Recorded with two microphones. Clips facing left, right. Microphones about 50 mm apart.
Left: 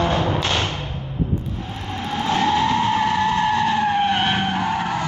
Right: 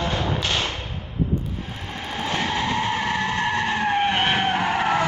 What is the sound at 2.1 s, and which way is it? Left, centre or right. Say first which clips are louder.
Vehicle: left 6 dB; centre.